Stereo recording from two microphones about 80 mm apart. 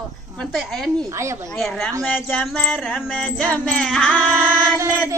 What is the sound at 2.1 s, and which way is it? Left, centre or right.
Music, centre.